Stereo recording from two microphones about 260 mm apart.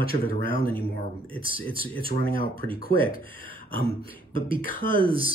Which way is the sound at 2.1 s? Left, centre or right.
Left.